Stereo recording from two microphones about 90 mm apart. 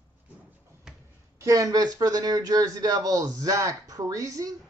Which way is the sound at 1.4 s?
40° right (ahead or behind).